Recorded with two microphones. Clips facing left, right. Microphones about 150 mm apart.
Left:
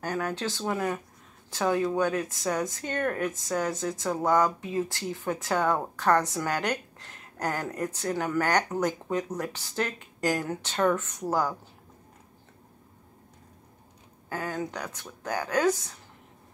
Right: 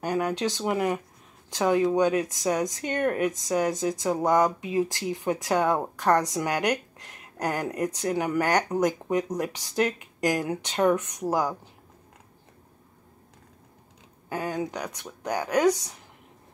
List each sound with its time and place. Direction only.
0.0 s speech: 15° right (ahead or behind)
14.3 s speech: 15° right (ahead or behind)